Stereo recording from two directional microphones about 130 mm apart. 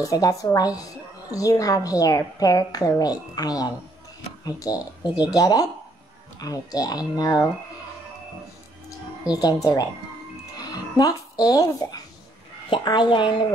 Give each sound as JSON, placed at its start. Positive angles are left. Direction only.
{"t": 0.0, "sound": "a woman's voice", "side_deg": 25}
{"t": 9.3, "sound": "a woman's voice", "side_deg": 30}